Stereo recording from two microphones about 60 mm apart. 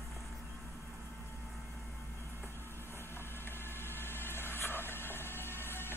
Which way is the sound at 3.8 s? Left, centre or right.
Left.